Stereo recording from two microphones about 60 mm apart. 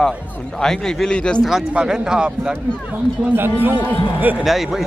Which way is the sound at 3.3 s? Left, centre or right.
Right.